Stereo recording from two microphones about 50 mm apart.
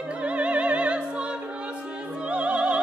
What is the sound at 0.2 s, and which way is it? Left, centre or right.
Music, right.